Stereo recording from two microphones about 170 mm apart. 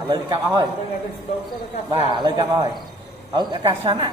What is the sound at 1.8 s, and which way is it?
A man's voice, 25° right (ahead or behind).